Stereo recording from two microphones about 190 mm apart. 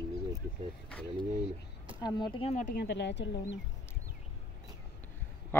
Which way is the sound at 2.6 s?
55° left (ahead or behind).